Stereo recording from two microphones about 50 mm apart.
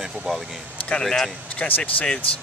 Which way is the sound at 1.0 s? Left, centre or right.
Centre.